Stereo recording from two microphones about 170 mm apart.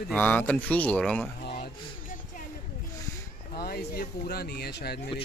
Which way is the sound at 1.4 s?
65° left (ahead or behind).